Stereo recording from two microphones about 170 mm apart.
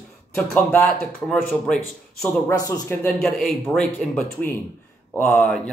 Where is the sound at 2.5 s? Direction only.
15° left (ahead or behind).